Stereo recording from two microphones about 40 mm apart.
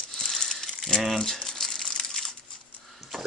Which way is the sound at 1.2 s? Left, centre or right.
Centre.